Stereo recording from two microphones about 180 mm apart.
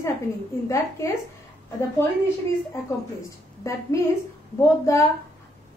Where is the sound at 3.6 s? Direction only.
15° left (ahead or behind).